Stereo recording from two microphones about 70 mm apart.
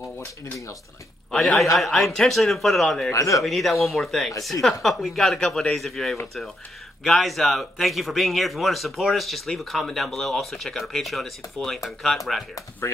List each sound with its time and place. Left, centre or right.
0.2 s speech: left
1.8 s speech: centre
3.1 s speech: left
3.4 s speech: centre